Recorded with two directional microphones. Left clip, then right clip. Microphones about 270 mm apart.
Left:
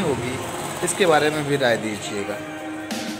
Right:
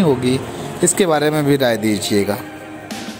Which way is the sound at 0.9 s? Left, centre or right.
Right.